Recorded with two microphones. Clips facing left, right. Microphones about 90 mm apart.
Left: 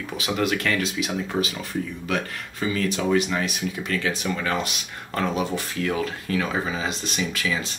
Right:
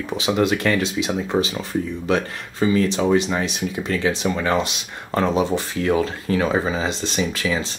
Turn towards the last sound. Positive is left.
turn(degrees=-30)  # may be behind; listen again after turning